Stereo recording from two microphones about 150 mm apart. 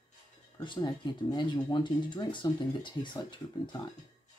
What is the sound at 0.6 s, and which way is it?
Speech, 30° left (ahead or behind).